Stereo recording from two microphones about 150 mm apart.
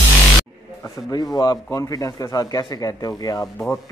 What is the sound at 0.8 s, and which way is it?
A man's voice, 20° left (ahead or behind).